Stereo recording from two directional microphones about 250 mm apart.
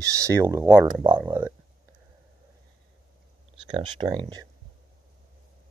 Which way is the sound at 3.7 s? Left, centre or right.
Centre.